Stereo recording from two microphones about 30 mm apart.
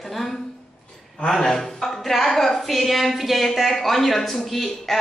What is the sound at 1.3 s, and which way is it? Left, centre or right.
A woman's voice, centre.